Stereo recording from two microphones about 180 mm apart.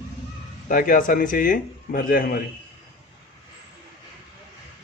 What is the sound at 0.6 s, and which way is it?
Speech, 50° left (ahead or behind).